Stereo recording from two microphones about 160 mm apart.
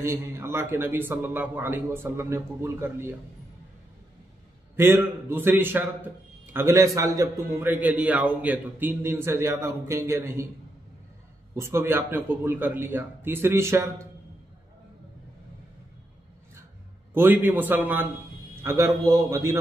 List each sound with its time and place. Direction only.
0.0 s a man's voice: 15° right (ahead or behind)
4.7 s a man's voice: 15° right (ahead or behind)
11.5 s a man's voice: 15° right (ahead or behind)
17.1 s a man's voice: 10° right (ahead or behind)